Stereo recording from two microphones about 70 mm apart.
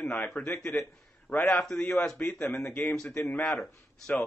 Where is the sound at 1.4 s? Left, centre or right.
Centre.